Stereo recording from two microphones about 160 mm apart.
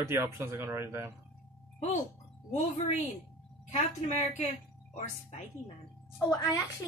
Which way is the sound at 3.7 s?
45° left (ahead or behind).